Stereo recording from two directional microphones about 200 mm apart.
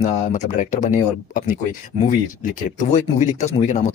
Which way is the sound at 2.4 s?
40° left (ahead or behind).